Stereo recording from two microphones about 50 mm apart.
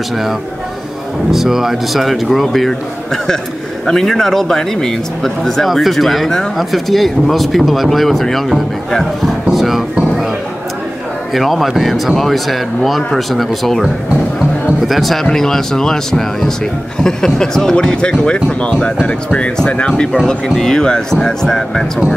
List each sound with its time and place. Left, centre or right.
1.3 s speech: centre
11.3 s speech: centre
14.9 s speech: centre